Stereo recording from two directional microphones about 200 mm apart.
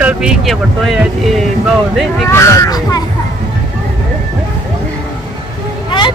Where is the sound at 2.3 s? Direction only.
15° left (ahead or behind).